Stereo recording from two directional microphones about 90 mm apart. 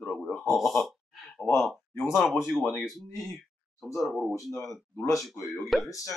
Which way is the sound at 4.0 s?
Centre (ahead or behind).